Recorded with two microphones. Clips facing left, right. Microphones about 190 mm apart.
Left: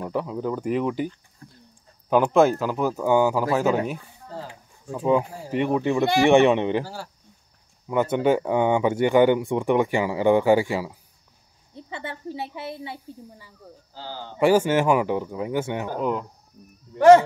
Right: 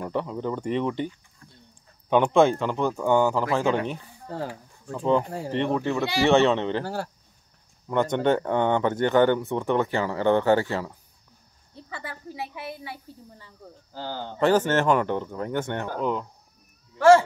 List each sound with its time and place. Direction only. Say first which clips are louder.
0.0 s speech: left 1 dB; 5° left (ahead or behind)
6.8 s speech: right 2 dB; 55° right (ahead or behind)
7.9 s speech: left 2 dB; 5° left (ahead or behind)
11.9 s a woman's voice: left 5 dB; 25° left (ahead or behind)
13.6 s speech: even; 5° left (ahead or behind)
13.9 s speech: right 4 dB; 55° right (ahead or behind)
14.4 s speech: left 2 dB; 10° left (ahead or behind)